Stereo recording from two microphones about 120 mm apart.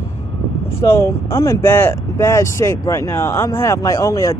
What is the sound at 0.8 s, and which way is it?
Speech, 25° left (ahead or behind).